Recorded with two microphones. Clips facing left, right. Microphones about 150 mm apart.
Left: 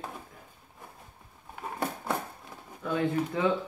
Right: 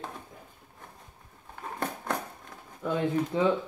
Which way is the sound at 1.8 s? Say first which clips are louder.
Left 1 dB; 5° left (ahead or behind).